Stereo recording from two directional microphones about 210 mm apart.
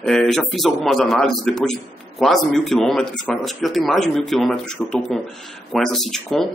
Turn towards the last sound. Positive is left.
turn(degrees=0)  # may be behind; listen again after turning